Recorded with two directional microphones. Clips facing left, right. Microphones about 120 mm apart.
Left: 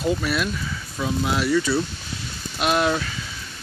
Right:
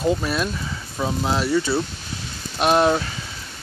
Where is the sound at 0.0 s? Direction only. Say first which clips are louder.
Right 1 dB; 25° right (ahead or behind).